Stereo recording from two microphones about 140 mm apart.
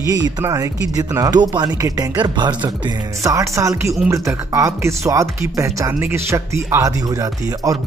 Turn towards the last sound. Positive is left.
turn(degrees=-25)  # may be behind; listen again after turning